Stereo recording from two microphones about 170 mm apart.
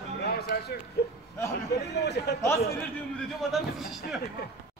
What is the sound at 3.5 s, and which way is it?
Speech, centre (ahead or behind).